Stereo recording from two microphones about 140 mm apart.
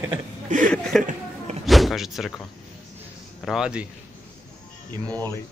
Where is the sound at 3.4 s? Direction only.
5° right (ahead or behind).